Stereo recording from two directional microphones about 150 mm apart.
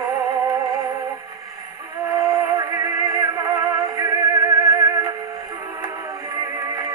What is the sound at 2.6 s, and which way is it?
Music, 25° right (ahead or behind).